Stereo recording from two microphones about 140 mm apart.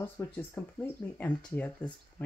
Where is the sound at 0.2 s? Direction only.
15° left (ahead or behind).